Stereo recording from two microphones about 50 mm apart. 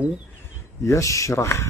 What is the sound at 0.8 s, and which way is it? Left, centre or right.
Speech, left.